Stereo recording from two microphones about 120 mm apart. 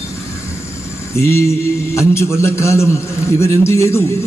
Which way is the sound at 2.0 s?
25° left (ahead or behind).